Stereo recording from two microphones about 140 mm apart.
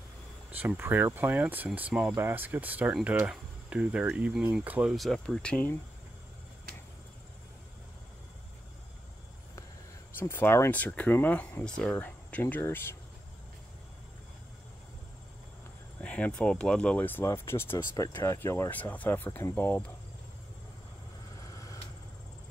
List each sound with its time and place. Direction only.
0.6 s speech: 15° right (ahead or behind); by 5.6 s 5° left (ahead or behind)
10.1 s speech: 15° left (ahead or behind)
16.0 s speech: 10° left (ahead or behind)
21.5 s vehicle: 25° left (ahead or behind)